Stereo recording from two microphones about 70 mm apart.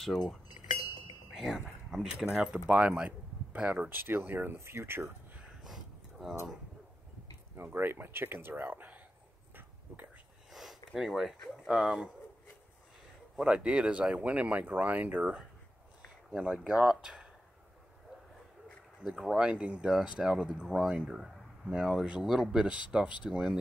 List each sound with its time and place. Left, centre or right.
1.3 s a sound: centre
2.3 s speech: centre
3.9 s speech: right
5.6 s a sound: centre
7.5 s speech: right
10.5 s a sound: centre
11.6 s speech: centre
13.4 s speech: centre
19.0 s speech: centre